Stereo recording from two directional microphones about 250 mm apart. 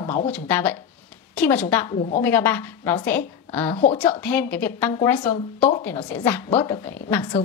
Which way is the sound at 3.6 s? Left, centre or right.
Left.